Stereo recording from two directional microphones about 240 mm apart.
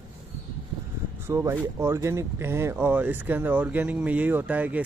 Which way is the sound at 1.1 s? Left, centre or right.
Centre.